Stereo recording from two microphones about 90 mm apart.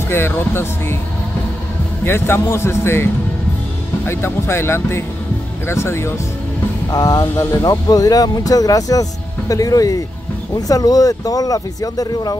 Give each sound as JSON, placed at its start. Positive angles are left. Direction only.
{"t": 0.1, "sound": "a man's voice", "side_deg": 25}
{"t": 2.0, "sound": "a man's voice", "side_deg": 25}
{"t": 6.9, "sound": "speech", "side_deg": 45}